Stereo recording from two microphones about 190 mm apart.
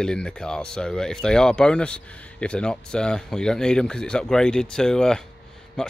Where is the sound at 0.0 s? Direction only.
5° left (ahead or behind).